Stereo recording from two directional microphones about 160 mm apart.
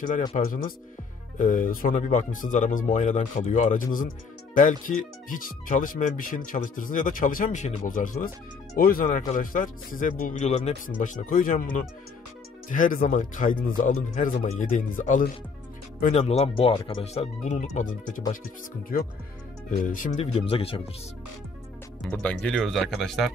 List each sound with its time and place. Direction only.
0.4 s speech: 60° left (ahead or behind); by 10.8 s 40° left (ahead or behind)
11.2 s speech: 60° left (ahead or behind)
16.1 s speech: 40° left (ahead or behind)
19.8 s speech: 55° left (ahead or behind)
20.4 s speech: 35° left (ahead or behind)
22.1 s speech: 10° left (ahead or behind)